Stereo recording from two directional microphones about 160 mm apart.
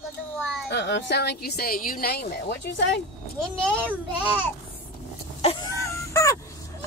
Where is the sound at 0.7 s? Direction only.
90° left.